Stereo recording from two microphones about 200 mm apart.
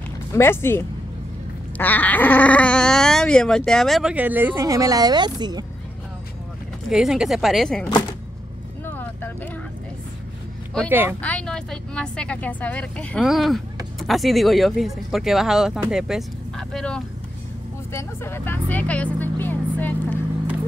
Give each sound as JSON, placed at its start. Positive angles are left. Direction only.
{"t": 0.3, "sound": "speech", "side_deg": 10}
{"t": 6.9, "sound": "speech", "side_deg": 0}
{"t": 8.8, "sound": "vehicle", "side_deg": 10}
{"t": 10.9, "sound": "speech", "side_deg": -10}
{"t": 11.1, "sound": "speech", "side_deg": 5}